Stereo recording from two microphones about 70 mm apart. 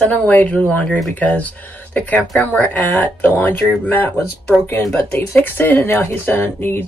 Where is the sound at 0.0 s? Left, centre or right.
Left.